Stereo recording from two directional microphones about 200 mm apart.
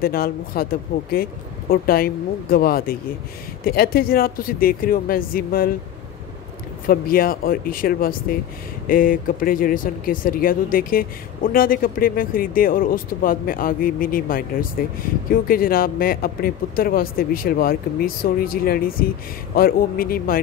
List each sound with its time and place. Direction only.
0.0 s speech: 50° left (ahead or behind)
6.9 s speech: 45° left (ahead or behind)